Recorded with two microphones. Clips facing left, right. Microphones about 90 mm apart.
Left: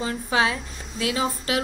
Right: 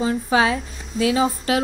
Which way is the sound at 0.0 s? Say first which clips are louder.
Right 4 dB; 25° right (ahead or behind).